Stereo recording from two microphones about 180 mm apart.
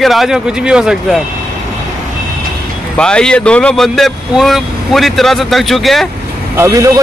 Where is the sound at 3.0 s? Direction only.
5° left (ahead or behind).